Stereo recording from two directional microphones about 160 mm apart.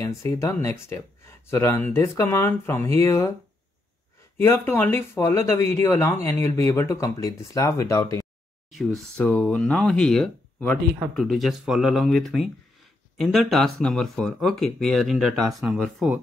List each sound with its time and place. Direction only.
0.0 s speech: 15° left (ahead or behind)
4.4 s speech: 15° left (ahead or behind)
8.6 s speech: centre (ahead or behind)